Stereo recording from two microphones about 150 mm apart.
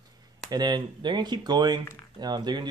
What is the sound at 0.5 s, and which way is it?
Speech, 30° right (ahead or behind).